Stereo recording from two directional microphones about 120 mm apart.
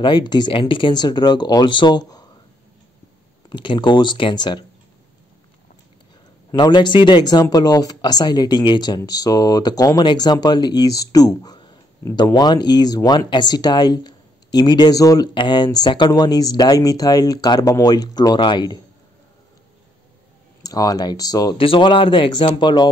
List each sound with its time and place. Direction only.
0.0 s speech: 40° left (ahead or behind)
3.4 s speech: 40° left (ahead or behind)
6.5 s a woman's voice: 35° left (ahead or behind)
20.6 s speech: 30° left (ahead or behind)
21.5 s speech: 45° left (ahead or behind)